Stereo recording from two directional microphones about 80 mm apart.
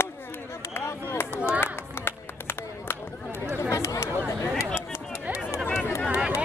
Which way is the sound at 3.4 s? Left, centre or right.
Left.